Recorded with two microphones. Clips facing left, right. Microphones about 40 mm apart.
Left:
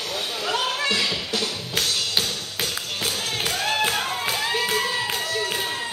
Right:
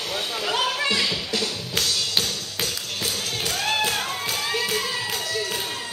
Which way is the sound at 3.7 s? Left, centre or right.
Left.